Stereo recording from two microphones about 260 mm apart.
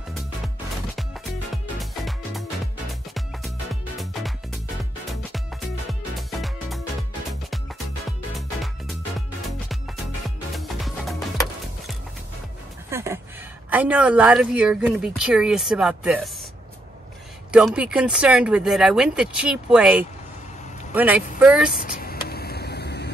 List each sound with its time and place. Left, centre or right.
1.8 s music: centre
5.9 s music: centre
10.5 s music: centre
12.9 s a sound: centre
13.7 s speech: centre
17.5 s speech: centre
22.0 s vehicle: left